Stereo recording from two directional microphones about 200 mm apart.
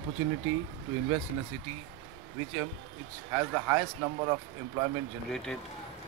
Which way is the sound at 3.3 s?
15° right (ahead or behind).